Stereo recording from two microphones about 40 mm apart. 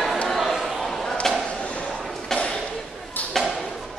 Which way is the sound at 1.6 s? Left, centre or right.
Left.